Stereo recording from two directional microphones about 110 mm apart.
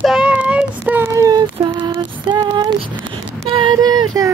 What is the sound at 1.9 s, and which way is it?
Female singing, 40° right (ahead or behind).